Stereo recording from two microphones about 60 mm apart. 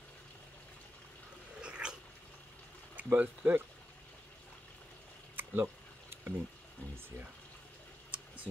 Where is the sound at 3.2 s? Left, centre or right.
Right.